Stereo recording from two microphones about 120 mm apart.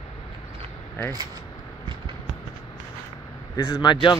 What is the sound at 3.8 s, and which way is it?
Speech, 40° left (ahead or behind).